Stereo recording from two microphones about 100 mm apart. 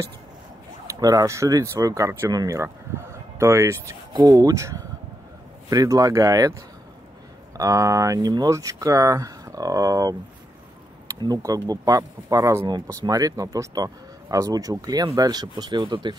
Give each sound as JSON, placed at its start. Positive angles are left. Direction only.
{"t": 0.9, "sound": "speech", "side_deg": -35}
{"t": 11.1, "sound": "speech", "side_deg": -40}
{"t": 12.6, "sound": "speech", "side_deg": -45}